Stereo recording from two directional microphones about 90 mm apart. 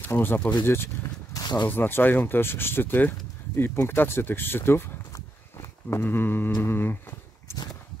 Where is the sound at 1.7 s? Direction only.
25° left (ahead or behind).